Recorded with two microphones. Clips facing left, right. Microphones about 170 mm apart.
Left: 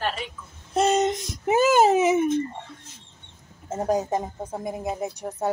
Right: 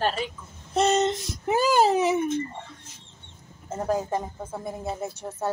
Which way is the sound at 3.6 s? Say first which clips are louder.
Left 2 dB; 20° left (ahead or behind).